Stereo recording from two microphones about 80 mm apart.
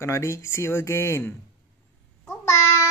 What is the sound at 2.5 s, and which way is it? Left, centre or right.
Child singing, left.